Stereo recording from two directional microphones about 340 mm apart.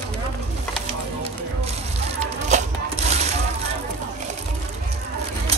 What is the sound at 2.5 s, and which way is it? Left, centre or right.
Wood, right.